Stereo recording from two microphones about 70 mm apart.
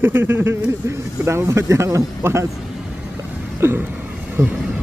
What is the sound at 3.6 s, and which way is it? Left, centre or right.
Speech, right.